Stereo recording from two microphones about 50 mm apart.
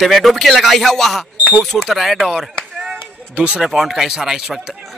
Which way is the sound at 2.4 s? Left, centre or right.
Centre.